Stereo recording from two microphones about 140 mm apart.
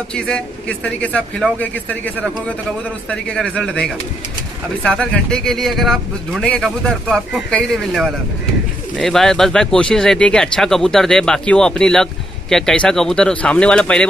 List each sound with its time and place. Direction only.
0.1 s speech: 10° left (ahead or behind)
3.1 s speech: 5° left (ahead or behind)